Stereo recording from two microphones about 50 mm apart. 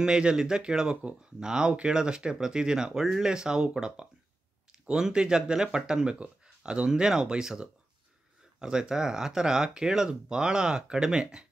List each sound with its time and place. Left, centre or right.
0.0 s speech: centre